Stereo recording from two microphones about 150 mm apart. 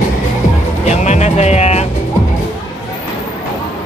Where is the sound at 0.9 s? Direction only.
50° left (ahead or behind).